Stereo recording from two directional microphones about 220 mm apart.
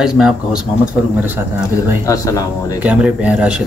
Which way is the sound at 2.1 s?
15° left (ahead or behind).